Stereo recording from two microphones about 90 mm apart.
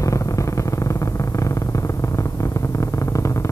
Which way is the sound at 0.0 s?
35° left (ahead or behind).